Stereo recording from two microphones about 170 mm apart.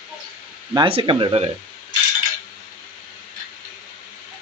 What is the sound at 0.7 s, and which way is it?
Speech, 30° right (ahead or behind).